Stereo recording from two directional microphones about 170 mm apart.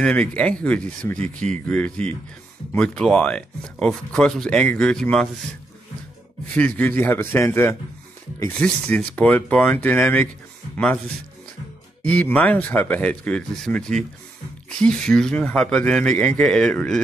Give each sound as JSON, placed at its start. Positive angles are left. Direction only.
{"t": 0.0, "sound": "speech", "side_deg": 5}
{"t": 6.8, "sound": "speech", "side_deg": 10}
{"t": 12.1, "sound": "speech", "side_deg": 10}